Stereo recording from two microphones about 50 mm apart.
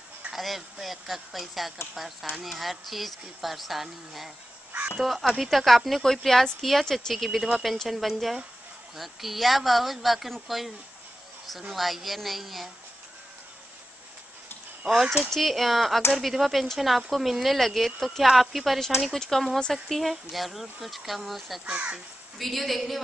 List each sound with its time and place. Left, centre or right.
0.3 s speech: centre
11.7 s speech: centre
14.9 s speech: centre
21.6 s speech: right
22.4 s speech: centre